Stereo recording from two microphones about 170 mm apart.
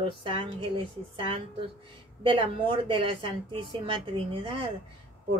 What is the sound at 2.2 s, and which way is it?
Speech, 30° right (ahead or behind).